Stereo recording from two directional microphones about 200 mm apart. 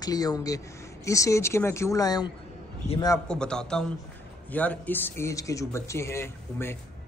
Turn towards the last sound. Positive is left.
turn(degrees=15)  # may be behind; listen again after turning